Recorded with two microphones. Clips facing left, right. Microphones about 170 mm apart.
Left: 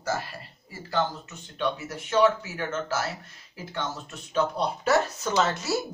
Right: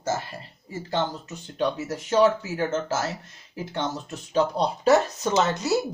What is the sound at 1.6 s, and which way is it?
Speech, 35° right (ahead or behind).